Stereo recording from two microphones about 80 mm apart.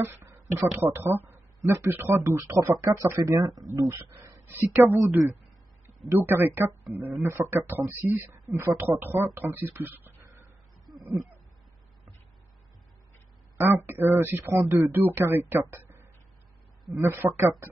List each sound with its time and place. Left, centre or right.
0.0 s speech: right
4.5 s speech: right
6.0 s speech: right
13.6 s speech: right